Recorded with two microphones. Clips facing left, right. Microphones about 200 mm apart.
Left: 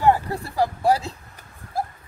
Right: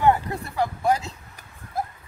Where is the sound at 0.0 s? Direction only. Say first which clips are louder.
Left 1 dB; 35° left (ahead or behind).